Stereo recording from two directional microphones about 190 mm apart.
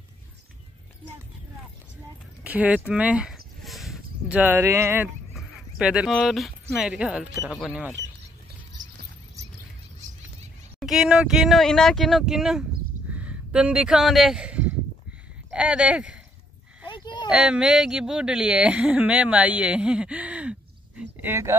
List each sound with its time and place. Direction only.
2.4 s speech: 5° right (ahead or behind)
2.9 s a sound: 5° right (ahead or behind)
5.3 s speech: 5° right (ahead or behind)
10.8 s speech: 5° right (ahead or behind)
16.8 s a sound: 25° left (ahead or behind)
17.3 s speech: 5° right (ahead or behind)